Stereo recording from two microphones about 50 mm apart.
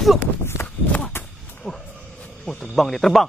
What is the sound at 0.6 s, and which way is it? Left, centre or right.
Walk, left.